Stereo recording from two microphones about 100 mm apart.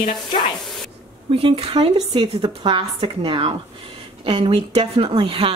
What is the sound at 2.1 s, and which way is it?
A woman's voice, 60° right (ahead or behind).